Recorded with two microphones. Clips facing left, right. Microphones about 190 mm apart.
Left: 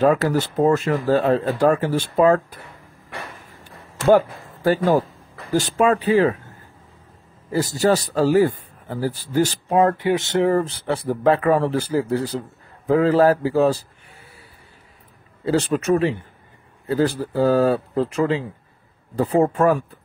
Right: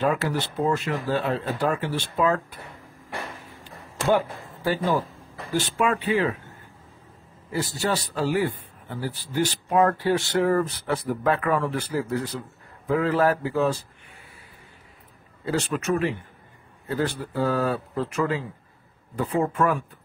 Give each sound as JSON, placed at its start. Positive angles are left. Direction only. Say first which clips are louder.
{"t": 0.0, "sound": "speech", "louder": "left 7 dB", "side_deg": 40}
{"t": 4.6, "sound": "speech", "louder": "left 6 dB", "side_deg": 45}
{"t": 7.5, "sound": "speech", "louder": "left 8 dB", "side_deg": 40}
{"t": 9.7, "sound": "speech", "louder": "left 1 dB", "side_deg": 25}
{"t": 15.4, "sound": "speech", "louder": "left 6 dB", "side_deg": 35}